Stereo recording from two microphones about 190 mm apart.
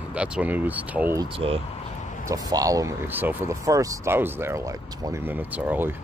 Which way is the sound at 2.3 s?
20° right (ahead or behind).